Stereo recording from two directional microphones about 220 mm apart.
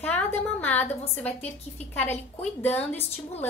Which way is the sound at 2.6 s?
10° left (ahead or behind).